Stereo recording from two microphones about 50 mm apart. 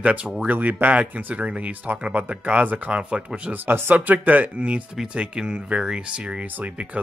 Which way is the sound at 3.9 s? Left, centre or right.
Right.